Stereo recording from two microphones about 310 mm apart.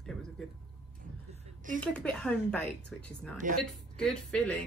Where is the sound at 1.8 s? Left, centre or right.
Centre.